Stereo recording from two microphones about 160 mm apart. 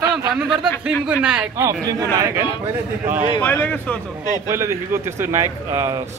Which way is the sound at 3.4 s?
10° left (ahead or behind).